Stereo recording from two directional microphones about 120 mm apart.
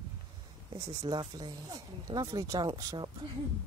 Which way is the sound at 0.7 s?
40° right (ahead or behind).